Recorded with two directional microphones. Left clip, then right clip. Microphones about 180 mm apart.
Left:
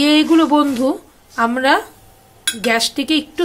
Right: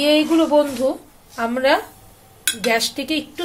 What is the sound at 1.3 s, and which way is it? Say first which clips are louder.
Speech: left 3 dB; 30° left (ahead or behind).